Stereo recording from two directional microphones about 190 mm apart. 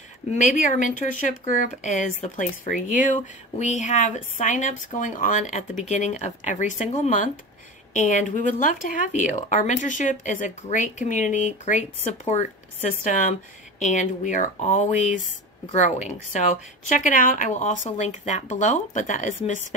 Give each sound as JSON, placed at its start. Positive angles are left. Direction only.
{"t": 0.7, "sound": "speech", "side_deg": 45}